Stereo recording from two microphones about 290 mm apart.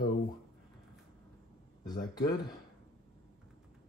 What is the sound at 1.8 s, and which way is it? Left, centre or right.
Speech, centre.